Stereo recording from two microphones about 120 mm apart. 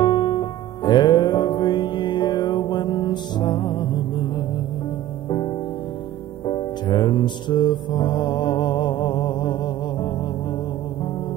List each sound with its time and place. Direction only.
0.0 s music: 40° left (ahead or behind)
6.4 s music: 40° left (ahead or behind)